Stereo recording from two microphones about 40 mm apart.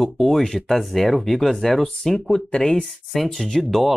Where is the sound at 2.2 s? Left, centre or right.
Left.